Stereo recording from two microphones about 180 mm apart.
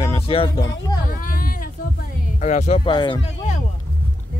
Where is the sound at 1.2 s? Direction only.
50° left (ahead or behind).